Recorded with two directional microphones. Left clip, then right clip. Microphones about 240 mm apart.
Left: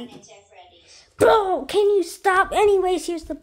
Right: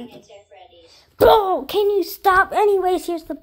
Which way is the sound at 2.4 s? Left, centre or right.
Centre.